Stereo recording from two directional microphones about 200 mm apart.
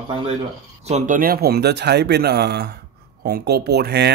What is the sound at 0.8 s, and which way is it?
A man's voice, 40° right (ahead or behind).